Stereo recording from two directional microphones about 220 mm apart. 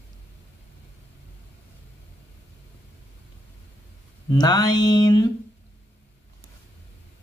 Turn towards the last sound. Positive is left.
turn(degrees=20)  # may be behind; listen again after turning